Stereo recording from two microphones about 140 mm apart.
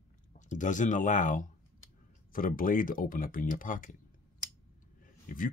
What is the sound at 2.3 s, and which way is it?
Speech, 90° left.